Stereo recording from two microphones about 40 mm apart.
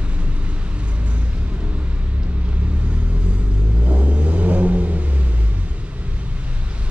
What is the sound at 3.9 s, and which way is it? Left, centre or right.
Vehicle, right.